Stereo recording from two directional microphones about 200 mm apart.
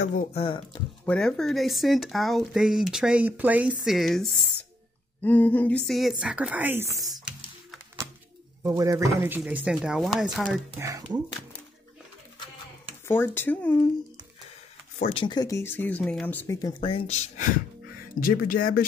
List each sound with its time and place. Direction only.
0.0 s speech: 35° left (ahead or behind)
1.0 s speech: 5° left (ahead or behind); by 7.2 s 20° right (ahead or behind)
8.6 s speech: 15° right (ahead or behind)
10.8 s speech: 15° right (ahead or behind)
13.0 s speech: 10° left (ahead or behind)
15.0 s speech: 30° left (ahead or behind); by 16.7 s 10° left (ahead or behind)
16.7 s speech: 25° left (ahead or behind)
18.2 s speech: 45° left (ahead or behind)